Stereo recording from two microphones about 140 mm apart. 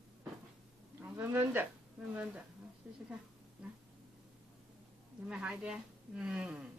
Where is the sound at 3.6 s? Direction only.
5° right (ahead or behind).